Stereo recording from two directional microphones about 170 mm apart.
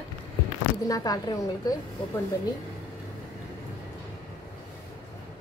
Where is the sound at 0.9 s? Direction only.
20° left (ahead or behind).